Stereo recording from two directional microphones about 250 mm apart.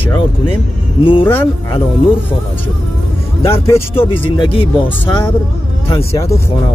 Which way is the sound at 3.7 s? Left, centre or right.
Centre.